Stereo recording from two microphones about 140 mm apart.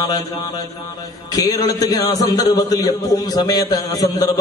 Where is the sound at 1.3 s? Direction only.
25° left (ahead or behind).